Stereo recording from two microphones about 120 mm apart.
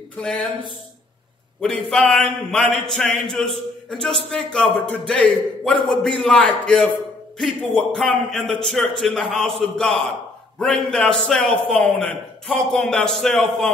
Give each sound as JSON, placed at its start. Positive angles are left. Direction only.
{"t": 0.2, "sound": "speech", "side_deg": 10}
{"t": 1.6, "sound": "a man's voice", "side_deg": 5}